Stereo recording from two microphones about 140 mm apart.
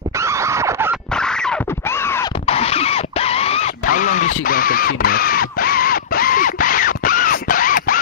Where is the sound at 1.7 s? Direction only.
15° left (ahead or behind).